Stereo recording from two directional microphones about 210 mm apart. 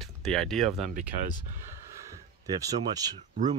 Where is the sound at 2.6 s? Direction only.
20° right (ahead or behind).